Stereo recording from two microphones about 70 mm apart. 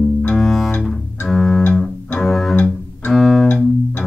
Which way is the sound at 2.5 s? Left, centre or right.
Left.